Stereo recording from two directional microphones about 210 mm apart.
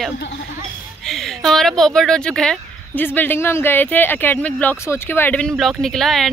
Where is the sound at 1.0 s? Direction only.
Centre (ahead or behind).